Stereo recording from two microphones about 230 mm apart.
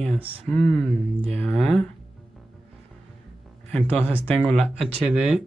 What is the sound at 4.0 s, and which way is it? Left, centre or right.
Speech, centre.